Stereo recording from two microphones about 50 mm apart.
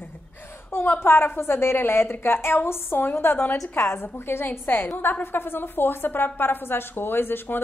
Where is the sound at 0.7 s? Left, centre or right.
Left.